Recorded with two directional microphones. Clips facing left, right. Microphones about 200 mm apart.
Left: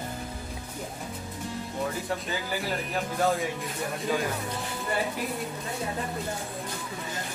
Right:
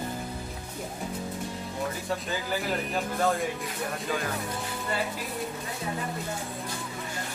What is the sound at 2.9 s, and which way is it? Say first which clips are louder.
Speech: left 2 dB; centre (ahead or behind).